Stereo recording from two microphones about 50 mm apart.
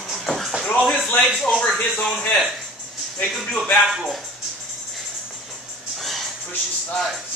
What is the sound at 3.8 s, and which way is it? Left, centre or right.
Speech, centre.